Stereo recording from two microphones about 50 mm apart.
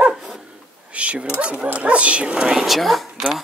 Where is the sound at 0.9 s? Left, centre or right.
Right.